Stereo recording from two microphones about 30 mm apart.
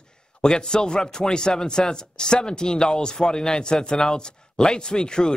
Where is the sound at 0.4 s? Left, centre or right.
Left.